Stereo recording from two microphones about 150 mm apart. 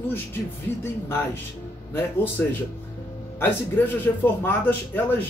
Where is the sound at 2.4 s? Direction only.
15° left (ahead or behind).